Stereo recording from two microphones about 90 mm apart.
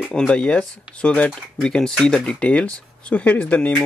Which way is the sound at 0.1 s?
10° left (ahead or behind).